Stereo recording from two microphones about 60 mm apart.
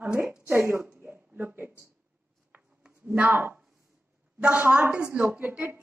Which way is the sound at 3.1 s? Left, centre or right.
Right.